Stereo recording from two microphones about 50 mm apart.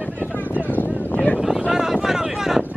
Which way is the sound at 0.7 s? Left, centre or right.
Left.